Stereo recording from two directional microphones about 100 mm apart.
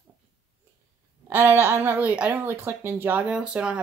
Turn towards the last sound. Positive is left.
turn(degrees=-10)  # may be behind; listen again after turning